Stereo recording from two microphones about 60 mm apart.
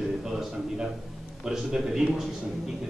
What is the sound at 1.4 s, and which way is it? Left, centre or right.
Speech, centre.